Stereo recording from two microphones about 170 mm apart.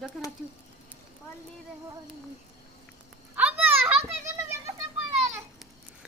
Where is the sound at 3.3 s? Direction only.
10° right (ahead or behind).